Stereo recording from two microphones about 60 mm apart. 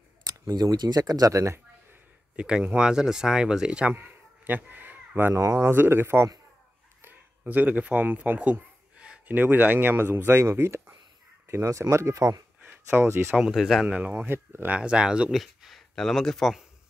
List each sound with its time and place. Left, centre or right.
0.3 s speech: right
2.3 s speech: centre
3.9 s a sound: right
5.3 s speech: right
5.7 s speech: right
7.0 s a sound: right
9.3 s speech: right
11.4 s speech: right
12.6 s speech: right
13.4 s speech: centre
13.8 s speech: right
14.2 s speech: right
14.7 s speech: centre
15.3 s speech: centre